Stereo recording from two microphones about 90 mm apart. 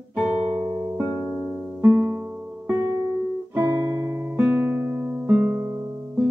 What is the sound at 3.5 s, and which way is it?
Guitar, 30° right (ahead or behind).